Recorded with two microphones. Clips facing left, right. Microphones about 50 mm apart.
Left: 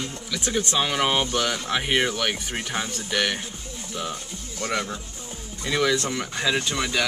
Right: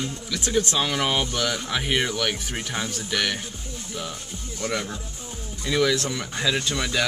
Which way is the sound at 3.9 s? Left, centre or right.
Centre.